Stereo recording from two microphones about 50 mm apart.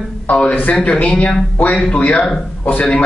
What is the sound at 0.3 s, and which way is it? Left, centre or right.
A man's voice, left.